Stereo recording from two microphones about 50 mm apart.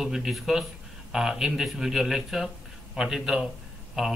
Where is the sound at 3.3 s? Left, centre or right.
Centre.